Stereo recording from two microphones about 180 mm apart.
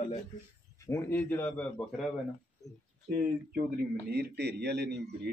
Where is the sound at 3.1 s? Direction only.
40° right (ahead or behind).